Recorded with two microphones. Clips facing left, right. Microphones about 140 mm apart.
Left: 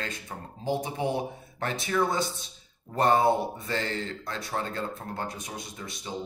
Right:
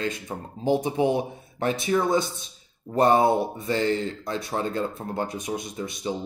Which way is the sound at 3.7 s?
15° right (ahead or behind).